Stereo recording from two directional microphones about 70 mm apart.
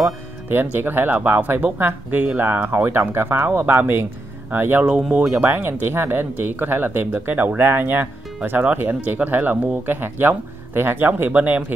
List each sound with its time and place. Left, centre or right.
0.5 s speech: right